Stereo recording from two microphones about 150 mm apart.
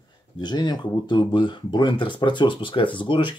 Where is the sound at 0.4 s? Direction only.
30° left (ahead or behind).